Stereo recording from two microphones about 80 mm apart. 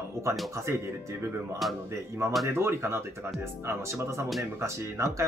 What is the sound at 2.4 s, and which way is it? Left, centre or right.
Speech, right.